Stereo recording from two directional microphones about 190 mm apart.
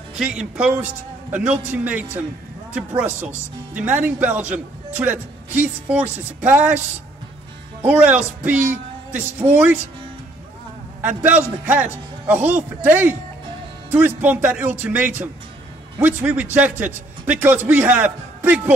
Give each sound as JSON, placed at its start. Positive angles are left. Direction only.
{"t": 0.2, "sound": "speech", "side_deg": -5}
{"t": 7.8, "sound": "speech", "side_deg": -10}
{"t": 11.0, "sound": "a man's voice", "side_deg": -10}